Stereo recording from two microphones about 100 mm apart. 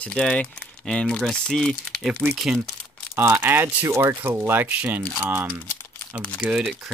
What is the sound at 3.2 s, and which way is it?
Speech, 25° right (ahead or behind).